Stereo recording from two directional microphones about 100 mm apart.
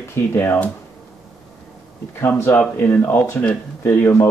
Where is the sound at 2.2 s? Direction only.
25° left (ahead or behind).